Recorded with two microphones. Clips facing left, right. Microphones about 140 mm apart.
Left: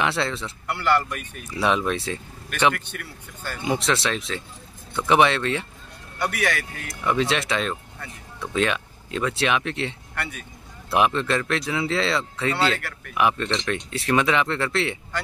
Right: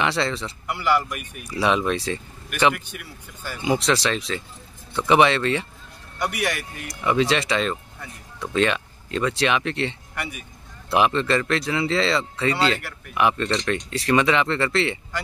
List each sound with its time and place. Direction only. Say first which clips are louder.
0.0 s speech: right 1 dB; centre (ahead or behind)
0.7 s speech: even; 10° right (ahead or behind)
1.5 s speech: right 1 dB; centre (ahead or behind)
6.1 s speech: even; 15° right (ahead or behind)
6.9 s speech: right 2 dB; centre (ahead or behind)
10.1 s speech: even; 10° right (ahead or behind)
10.9 s speech: right 1 dB; centre (ahead or behind)